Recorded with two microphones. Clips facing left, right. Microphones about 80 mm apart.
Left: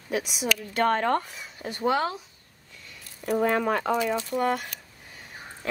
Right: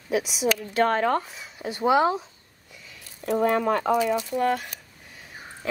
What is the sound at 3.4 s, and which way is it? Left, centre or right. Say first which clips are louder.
Speech: right 3 dB; centre.